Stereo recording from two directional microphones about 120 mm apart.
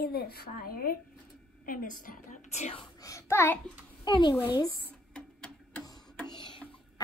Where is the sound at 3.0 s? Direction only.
25° left (ahead or behind).